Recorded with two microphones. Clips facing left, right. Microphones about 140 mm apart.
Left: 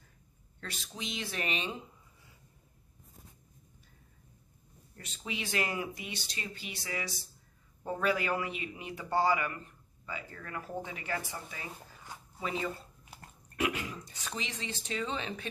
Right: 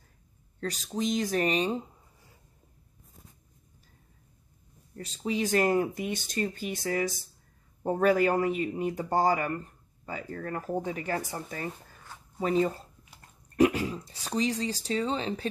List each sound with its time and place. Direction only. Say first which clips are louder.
0.6 s speech: right 11 dB; 40° right (ahead or behind)
4.9 s speech: right 10 dB; 35° right (ahead or behind)